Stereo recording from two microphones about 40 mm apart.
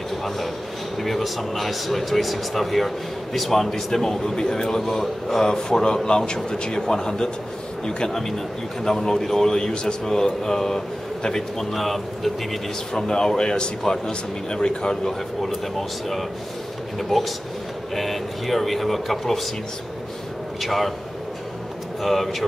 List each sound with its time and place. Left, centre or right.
0.9 s speech: centre
11.7 s speech: centre
12.9 s speech: centre
17.1 s speech: centre
20.6 s speech: centre
22.0 s speech: centre